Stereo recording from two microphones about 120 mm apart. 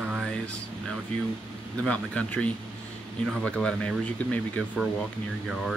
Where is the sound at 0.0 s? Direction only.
10° right (ahead or behind).